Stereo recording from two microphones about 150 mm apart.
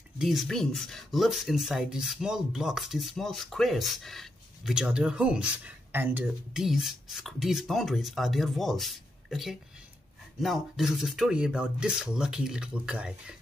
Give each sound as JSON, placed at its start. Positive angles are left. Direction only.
{"t": 0.2, "sound": "speech", "side_deg": 0}